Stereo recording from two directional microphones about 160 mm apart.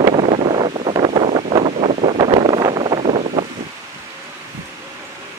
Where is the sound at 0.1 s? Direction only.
40° right (ahead or behind).